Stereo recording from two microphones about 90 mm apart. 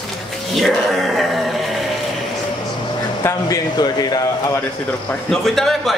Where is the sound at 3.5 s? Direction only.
50° left (ahead or behind).